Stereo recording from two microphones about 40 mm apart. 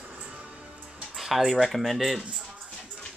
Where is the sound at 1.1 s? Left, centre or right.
Centre.